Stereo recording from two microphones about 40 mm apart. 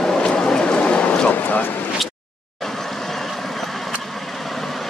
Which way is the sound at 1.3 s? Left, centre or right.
Left.